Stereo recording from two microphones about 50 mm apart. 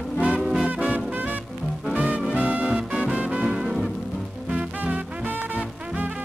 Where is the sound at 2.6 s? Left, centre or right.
Right.